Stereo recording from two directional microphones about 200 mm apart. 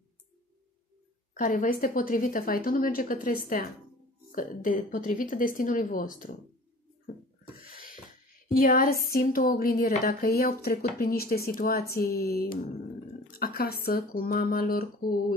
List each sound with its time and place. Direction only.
1.3 s a woman's voice: 40° left (ahead or behind)
7.5 s a sound: 45° left (ahead or behind)
8.5 s a woman's voice: 45° left (ahead or behind)